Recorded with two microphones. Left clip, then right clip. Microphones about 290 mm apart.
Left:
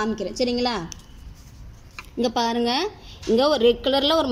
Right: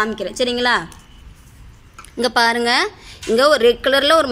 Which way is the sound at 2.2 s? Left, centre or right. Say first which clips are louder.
Right 7 dB; right.